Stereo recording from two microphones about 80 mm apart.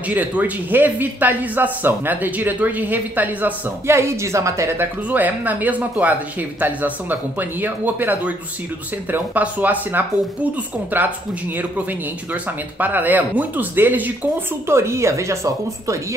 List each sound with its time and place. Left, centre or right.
0.1 s speech: right
3.9 s speech: right
5.1 s speech: right
12.3 s speech: right
14.7 s speech: right